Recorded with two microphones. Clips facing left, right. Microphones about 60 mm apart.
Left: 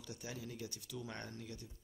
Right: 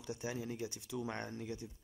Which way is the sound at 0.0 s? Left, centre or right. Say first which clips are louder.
Right 6 dB; right.